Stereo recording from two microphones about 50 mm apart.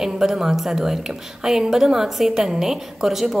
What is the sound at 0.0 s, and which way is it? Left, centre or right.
A woman's voice, centre.